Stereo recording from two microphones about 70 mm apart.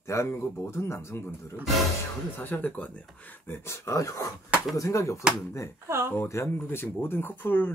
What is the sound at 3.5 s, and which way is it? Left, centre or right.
Speech, left.